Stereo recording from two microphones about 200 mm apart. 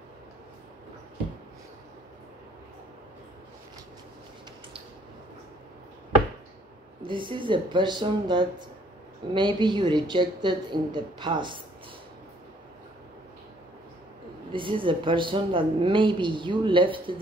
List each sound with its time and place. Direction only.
7.0 s a woman's voice: 25° right (ahead or behind)
14.5 s a woman's voice: 25° right (ahead or behind)